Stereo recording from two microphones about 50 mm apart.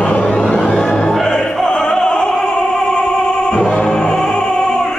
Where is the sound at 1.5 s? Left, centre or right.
Centre.